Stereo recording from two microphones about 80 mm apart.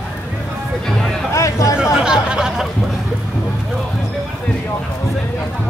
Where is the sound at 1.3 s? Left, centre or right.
Left.